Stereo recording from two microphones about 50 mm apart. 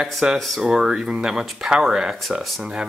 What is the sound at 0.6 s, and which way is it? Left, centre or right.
A man's voice, centre.